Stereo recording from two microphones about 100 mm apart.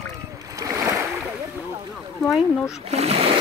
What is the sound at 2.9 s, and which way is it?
Speech, 90° right.